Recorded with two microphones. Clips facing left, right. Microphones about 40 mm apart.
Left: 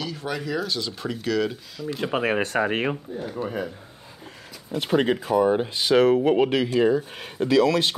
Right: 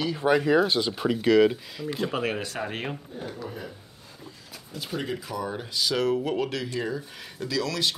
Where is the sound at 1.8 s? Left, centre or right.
Centre.